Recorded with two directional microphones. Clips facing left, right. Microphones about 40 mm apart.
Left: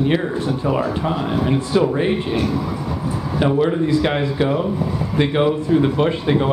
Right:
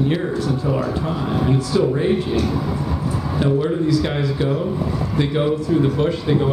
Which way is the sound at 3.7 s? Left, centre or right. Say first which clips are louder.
Left 2 dB; left.